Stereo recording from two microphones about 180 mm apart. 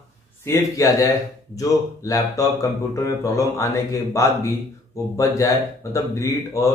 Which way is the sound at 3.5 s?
15° left (ahead or behind).